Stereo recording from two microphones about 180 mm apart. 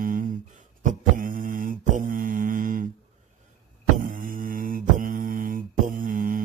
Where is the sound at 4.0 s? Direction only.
50° right (ahead or behind).